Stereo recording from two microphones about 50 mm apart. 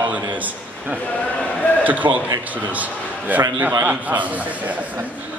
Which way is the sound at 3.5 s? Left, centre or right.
Right.